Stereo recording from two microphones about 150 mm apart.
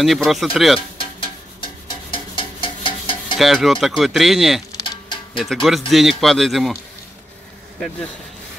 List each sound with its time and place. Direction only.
0.0 s speech: centre (ahead or behind)
0.7 s music: 35° left (ahead or behind)
2.0 s a sound: 35° left (ahead or behind)
3.3 s speech: centre (ahead or behind)
4.7 s a sound: 30° left (ahead or behind)
5.4 s speech: centre (ahead or behind)